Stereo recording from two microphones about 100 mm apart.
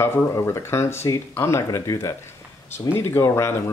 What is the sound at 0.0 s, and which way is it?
Speech, 30° left (ahead or behind).